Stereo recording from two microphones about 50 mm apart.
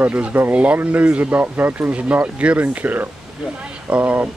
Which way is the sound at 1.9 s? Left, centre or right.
Right.